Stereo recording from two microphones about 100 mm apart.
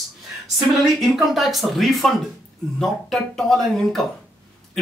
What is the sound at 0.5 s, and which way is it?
Speech, 5° right (ahead or behind).